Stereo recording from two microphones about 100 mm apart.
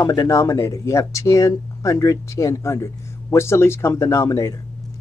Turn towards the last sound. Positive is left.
turn(degrees=30)  # may be behind; listen again after turning